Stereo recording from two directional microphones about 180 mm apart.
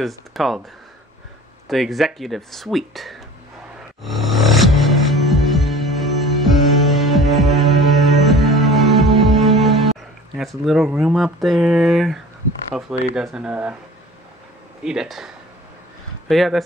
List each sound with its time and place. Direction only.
0.0 s speech: centre (ahead or behind)
1.7 s speech: centre (ahead or behind)
4.0 s music: centre (ahead or behind)
10.3 s speech: centre (ahead or behind)
14.8 s speech: 5° right (ahead or behind)